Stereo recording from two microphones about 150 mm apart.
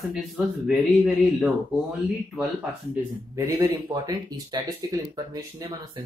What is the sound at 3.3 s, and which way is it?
Speech, 20° right (ahead or behind).